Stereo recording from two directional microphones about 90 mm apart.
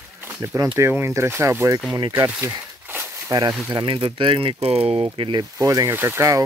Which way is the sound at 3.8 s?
70° right (ahead or behind).